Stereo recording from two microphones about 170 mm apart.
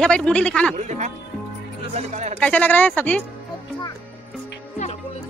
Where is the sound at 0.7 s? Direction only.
45° right (ahead or behind).